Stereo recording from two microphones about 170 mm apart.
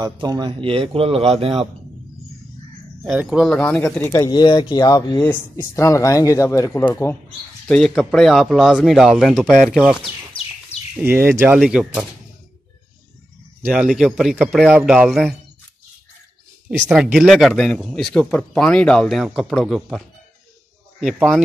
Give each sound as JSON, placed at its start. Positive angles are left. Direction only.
{"t": 0.0, "sound": "speech", "side_deg": -25}
{"t": 3.1, "sound": "speech", "side_deg": -5}
{"t": 3.5, "sound": "speech", "side_deg": 10}
{"t": 7.6, "sound": "speech", "side_deg": 5}
{"t": 11.0, "sound": "speech", "side_deg": -10}
{"t": 13.7, "sound": "speech", "side_deg": -5}
{"t": 16.7, "sound": "speech", "side_deg": -5}
{"t": 21.0, "sound": "speech", "side_deg": -5}